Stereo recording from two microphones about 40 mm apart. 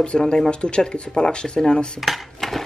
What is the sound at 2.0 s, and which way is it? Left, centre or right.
Speech, centre.